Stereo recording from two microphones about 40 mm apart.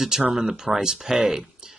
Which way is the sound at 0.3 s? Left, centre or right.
Centre.